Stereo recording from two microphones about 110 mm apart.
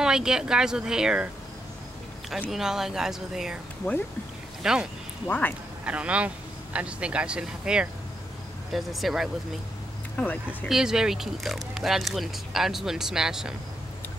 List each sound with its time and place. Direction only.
0.0 s speech: 5° right (ahead or behind)
2.5 s speech: 5° right (ahead or behind)
4.6 s speech: 5° right (ahead or behind)
5.2 s speech: 15° left (ahead or behind)
5.9 s speech: 10° right (ahead or behind)
10.1 s speech: 15° left (ahead or behind)
10.7 s speech: 5° right (ahead or behind)